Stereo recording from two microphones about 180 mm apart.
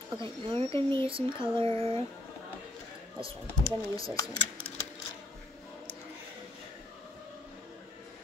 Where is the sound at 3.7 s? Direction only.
20° left (ahead or behind).